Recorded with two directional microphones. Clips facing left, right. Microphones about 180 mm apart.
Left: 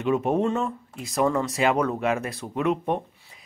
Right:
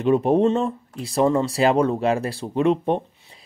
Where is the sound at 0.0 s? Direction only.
35° right (ahead or behind).